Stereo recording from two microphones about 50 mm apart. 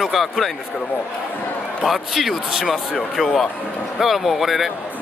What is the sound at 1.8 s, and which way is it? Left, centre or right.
Speech, centre.